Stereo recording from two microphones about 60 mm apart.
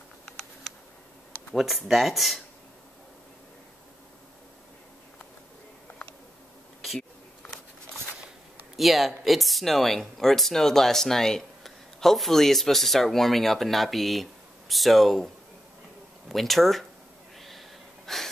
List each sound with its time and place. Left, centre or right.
0.2 s a sound: centre
1.5 s speech: centre
8.7 s speech: centre
17.4 s gasp: centre